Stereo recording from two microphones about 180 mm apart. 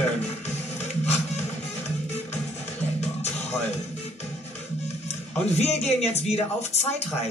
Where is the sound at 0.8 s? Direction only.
40° left (ahead or behind).